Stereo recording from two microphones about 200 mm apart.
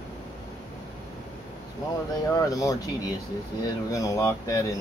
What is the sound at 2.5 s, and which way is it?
Speech, 15° left (ahead or behind).